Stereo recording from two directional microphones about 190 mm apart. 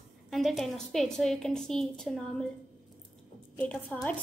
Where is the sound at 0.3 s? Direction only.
Centre (ahead or behind).